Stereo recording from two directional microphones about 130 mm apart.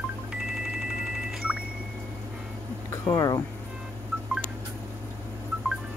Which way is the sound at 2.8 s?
30° left (ahead or behind).